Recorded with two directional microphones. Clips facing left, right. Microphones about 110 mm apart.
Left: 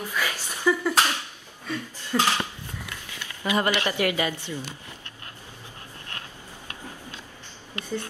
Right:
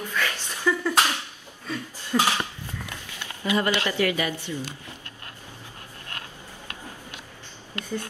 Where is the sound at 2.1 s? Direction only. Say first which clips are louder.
Right 1 dB; 5° right (ahead or behind).